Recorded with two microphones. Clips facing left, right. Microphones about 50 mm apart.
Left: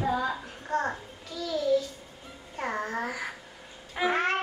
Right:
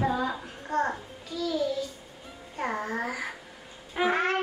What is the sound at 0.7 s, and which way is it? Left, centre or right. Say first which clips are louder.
Speech: right 1 dB; centre.